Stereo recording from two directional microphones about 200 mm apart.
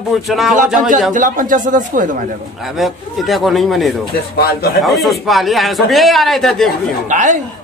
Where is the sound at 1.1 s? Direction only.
40° right (ahead or behind).